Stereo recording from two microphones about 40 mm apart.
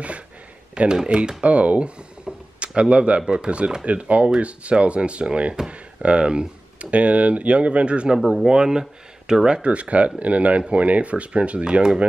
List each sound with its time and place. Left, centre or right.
1.0 s speech: right
2.2 s a sound: right
3.2 s speech: right
8.2 s speech: centre
8.5 s speech: centre
9.6 s speech: right